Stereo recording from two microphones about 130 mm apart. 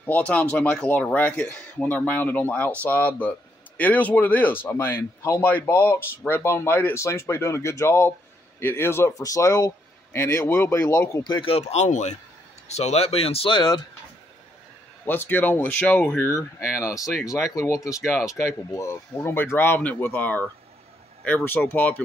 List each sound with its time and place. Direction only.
0.0 s speech: 10° left (ahead or behind); by 11.5 s 35° left (ahead or behind)
11.5 s speech: 60° left (ahead or behind)
15.0 s speech: 15° left (ahead or behind)
16.3 s speech: 25° left (ahead or behind)